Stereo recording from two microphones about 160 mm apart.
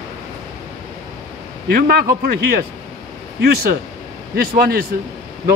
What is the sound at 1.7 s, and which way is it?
Speech, 70° right (ahead or behind).